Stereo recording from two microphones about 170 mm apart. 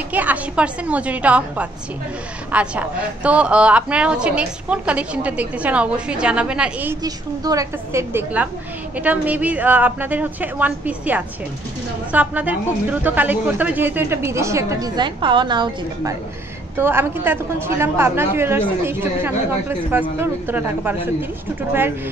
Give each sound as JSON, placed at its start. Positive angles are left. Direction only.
{"t": 0.1, "sound": "a woman's voice", "side_deg": -10}
{"t": 7.0, "sound": "a woman's voice", "side_deg": -20}